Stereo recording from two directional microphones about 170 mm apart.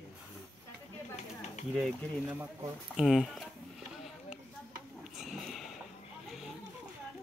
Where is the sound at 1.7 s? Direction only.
5° right (ahead or behind).